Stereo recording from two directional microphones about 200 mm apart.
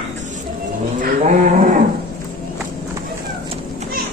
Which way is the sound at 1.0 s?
40° right (ahead or behind).